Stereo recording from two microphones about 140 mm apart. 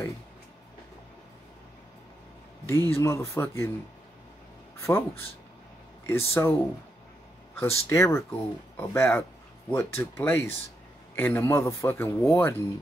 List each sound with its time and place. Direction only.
2.9 s speech: 20° left (ahead or behind)
4.7 s speech: 20° left (ahead or behind)
6.0 s a man's voice: 20° left (ahead or behind)
7.7 s a man's voice: 20° left (ahead or behind)